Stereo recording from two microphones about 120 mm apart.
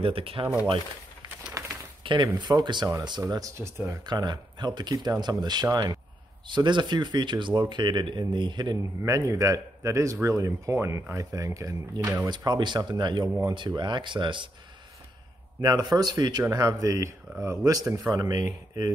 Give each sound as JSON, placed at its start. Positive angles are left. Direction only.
{"t": 0.0, "sound": "speech", "side_deg": -50}
{"t": 1.6, "sound": "a sound", "side_deg": -30}
{"t": 2.3, "sound": "speech", "side_deg": -35}
{"t": 4.0, "sound": "speech", "side_deg": -35}
{"t": 9.0, "sound": "speech", "side_deg": -25}
{"t": 15.6, "sound": "speech", "side_deg": -35}